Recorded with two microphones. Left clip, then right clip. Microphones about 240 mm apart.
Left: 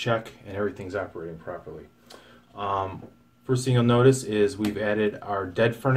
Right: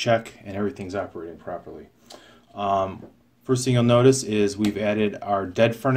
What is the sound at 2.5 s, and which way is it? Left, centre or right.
Speech, right.